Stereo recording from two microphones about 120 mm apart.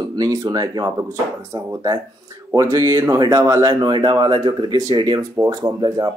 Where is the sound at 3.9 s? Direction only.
40° right (ahead or behind).